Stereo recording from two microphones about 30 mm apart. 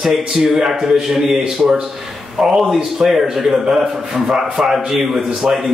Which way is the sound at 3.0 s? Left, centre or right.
Right.